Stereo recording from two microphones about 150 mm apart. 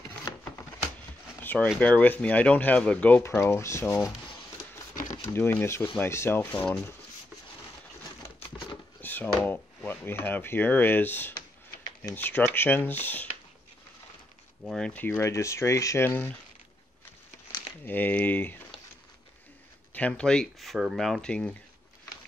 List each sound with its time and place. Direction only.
1.4 s a sound: 10° left (ahead or behind)
1.8 s speech: 10° left (ahead or behind)
5.2 s speech: 15° left (ahead or behind)
9.0 s speech: 10° left (ahead or behind)
14.6 s speech: 5° left (ahead or behind)
17.8 s speech: 10° left (ahead or behind)
19.9 s speech: 10° left (ahead or behind)